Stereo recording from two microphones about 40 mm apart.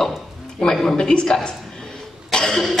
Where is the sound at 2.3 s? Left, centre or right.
Centre.